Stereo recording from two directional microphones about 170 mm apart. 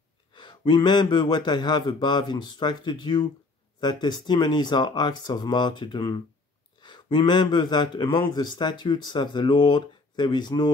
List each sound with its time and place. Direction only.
0.3 s speech: 25° left (ahead or behind)